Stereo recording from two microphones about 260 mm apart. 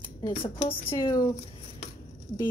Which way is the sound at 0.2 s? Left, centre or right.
Left.